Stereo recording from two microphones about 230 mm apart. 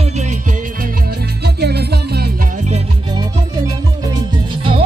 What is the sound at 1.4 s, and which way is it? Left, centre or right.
Music, right.